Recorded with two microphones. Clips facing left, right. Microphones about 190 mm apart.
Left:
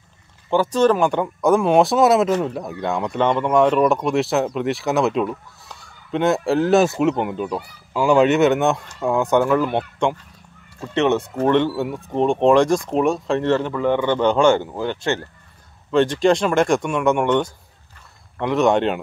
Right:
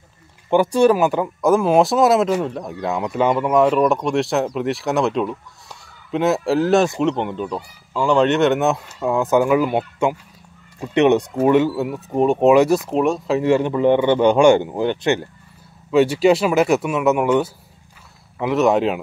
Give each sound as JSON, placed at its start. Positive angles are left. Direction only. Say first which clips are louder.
{"t": 0.5, "sound": "speech", "louder": "right 2 dB", "side_deg": -10}